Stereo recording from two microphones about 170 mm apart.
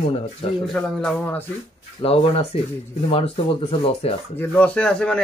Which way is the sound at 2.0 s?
35° left (ahead or behind).